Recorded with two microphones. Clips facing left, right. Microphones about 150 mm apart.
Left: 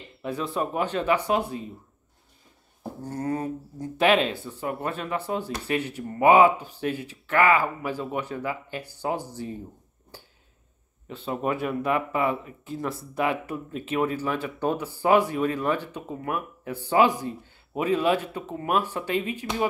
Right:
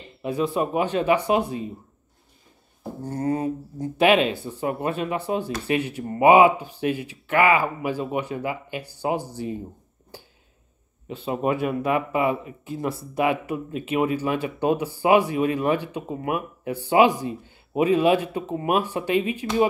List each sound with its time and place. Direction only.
0.2 s speech: 10° right (ahead or behind)
3.1 s speech: 20° right (ahead or behind)
11.1 s speech: 15° right (ahead or behind)